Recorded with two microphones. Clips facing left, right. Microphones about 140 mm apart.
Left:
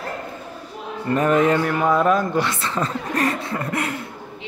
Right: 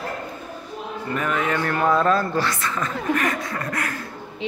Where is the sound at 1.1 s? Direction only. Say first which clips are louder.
Left 7 dB; 35° left (ahead or behind).